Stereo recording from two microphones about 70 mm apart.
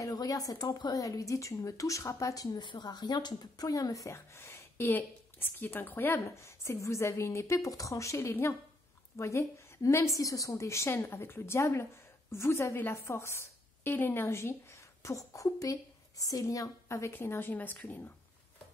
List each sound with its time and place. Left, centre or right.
0.1 s speech: left
3.6 s a woman's voice: left
4.4 s a woman's voice: left
6.2 s a woman's voice: left
17.1 s speech: left